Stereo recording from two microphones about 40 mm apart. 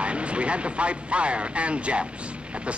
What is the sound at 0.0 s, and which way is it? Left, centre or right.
Speech, right.